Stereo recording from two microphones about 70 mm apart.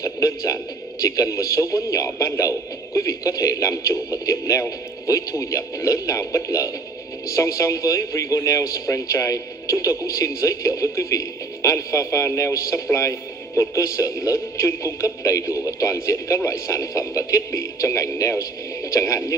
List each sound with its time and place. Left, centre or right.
0.0 s a man's voice: left